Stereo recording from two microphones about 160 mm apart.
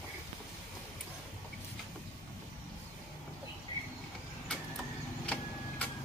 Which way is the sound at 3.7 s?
30° left (ahead or behind).